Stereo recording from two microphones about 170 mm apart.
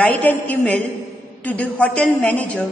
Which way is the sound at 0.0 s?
10° left (ahead or behind).